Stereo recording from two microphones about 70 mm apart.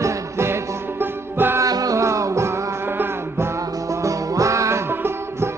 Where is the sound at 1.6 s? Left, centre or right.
Right.